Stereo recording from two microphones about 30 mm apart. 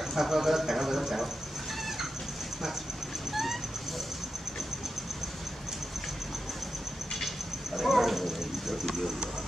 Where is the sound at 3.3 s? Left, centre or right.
Centre.